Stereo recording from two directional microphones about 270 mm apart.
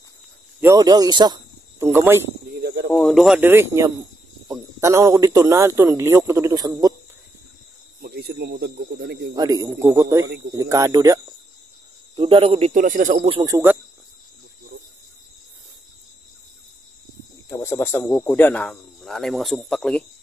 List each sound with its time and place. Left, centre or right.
0.6 s speech: centre
2.6 s speech: right
2.9 s speech: centre
8.0 s speech: right
9.3 s speech: centre
10.2 s speech: right
10.5 s speech: centre
12.2 s speech: centre
17.5 s speech: centre